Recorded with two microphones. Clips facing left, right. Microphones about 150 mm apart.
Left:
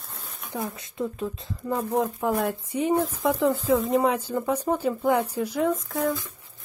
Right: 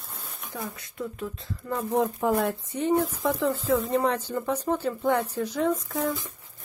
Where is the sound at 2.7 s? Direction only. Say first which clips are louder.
Left 2 dB; 10° left (ahead or behind).